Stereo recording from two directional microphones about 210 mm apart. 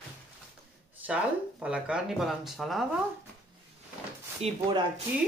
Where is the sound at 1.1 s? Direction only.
5° right (ahead or behind).